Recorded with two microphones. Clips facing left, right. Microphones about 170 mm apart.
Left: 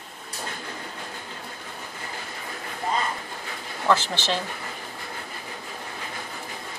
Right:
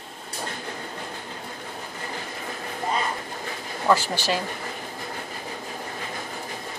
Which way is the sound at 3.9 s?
5° right (ahead or behind).